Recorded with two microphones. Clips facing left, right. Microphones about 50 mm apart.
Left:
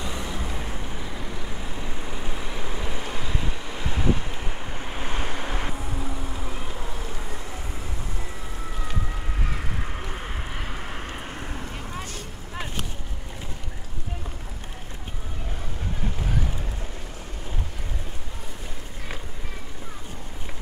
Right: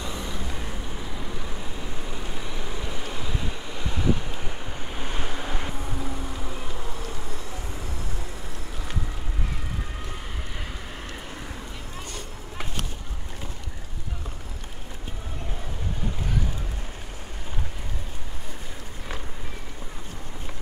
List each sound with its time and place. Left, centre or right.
0.0 s vehicle: centre
3.7 s wind: centre
4.4 s waves: centre
5.4 s vehicle: centre